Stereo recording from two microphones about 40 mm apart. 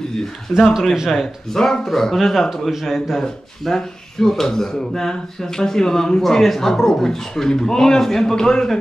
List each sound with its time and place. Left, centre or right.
0.5 s speech: centre